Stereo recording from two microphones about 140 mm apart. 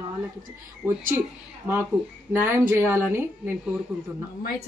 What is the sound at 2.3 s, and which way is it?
A woman's voice, 15° right (ahead or behind).